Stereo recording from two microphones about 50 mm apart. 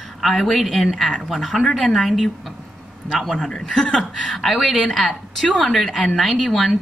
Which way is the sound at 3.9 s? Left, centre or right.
Centre.